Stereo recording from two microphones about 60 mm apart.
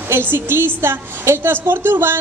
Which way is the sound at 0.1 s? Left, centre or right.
Right.